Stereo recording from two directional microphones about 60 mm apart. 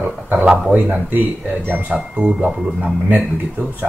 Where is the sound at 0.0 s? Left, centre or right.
Right.